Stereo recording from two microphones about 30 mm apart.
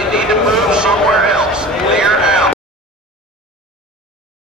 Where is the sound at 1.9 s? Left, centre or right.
Right.